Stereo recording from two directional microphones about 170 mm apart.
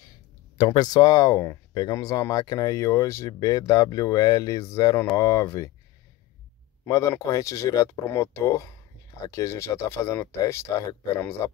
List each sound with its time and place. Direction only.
0.6 s speech: 25° left (ahead or behind)
6.9 s speech: 20° left (ahead or behind)